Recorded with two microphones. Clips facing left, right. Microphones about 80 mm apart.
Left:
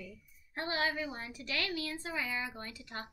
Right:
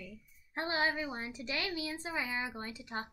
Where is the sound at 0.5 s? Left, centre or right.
Right.